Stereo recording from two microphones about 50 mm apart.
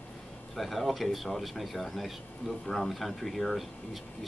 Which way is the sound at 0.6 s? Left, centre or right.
Centre.